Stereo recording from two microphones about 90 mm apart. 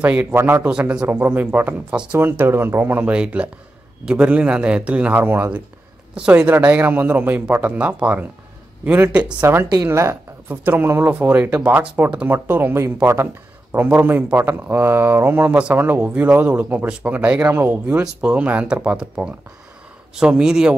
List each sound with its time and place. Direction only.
0.0 s speech: 15° right (ahead or behind)
0.7 s speech: 10° right (ahead or behind)
9.8 s speech: 25° right (ahead or behind)
12.3 s speech: 25° right (ahead or behind)